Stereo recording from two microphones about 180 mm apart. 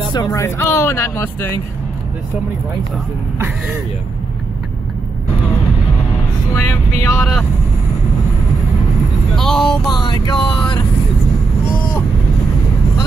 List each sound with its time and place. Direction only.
0.1 s speech: 20° left (ahead or behind)
6.5 s speech: 15° left (ahead or behind)
9.3 s vehicle: 5° left (ahead or behind)
9.8 s vehicle: 25° left (ahead or behind)